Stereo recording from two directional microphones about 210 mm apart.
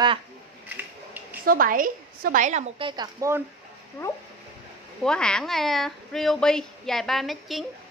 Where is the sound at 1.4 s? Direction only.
40° right (ahead or behind).